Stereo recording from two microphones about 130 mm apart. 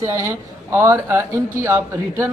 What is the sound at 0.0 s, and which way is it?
Speech, 20° right (ahead or behind).